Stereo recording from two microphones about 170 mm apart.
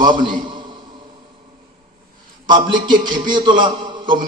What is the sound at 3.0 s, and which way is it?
A man's voice, 25° right (ahead or behind).